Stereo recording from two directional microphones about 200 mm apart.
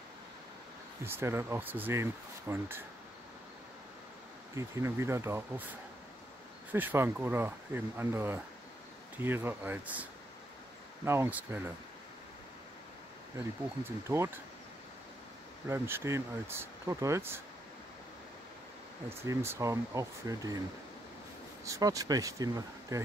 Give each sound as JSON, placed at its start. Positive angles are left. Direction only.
{"t": 1.0, "sound": "speech", "side_deg": -10}
{"t": 4.6, "sound": "speech", "side_deg": -15}
{"t": 6.7, "sound": "speech", "side_deg": -10}
{"t": 11.1, "sound": "speech", "side_deg": -10}
{"t": 13.8, "sound": "speech", "side_deg": -15}
{"t": 15.7, "sound": "speech", "side_deg": -15}
{"t": 19.0, "sound": "speech", "side_deg": -10}
{"t": 21.6, "sound": "speech", "side_deg": -15}